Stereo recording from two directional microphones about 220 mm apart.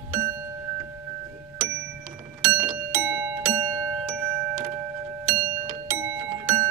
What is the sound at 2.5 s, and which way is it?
Music, 10° right (ahead or behind).